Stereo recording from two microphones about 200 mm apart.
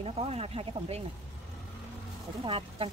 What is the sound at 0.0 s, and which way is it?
Speech, 30° right (ahead or behind).